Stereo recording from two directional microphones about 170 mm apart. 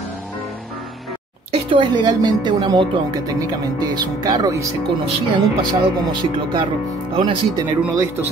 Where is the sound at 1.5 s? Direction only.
30° right (ahead or behind).